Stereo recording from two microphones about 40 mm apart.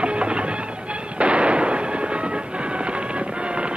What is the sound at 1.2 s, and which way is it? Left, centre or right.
Fireworks, right.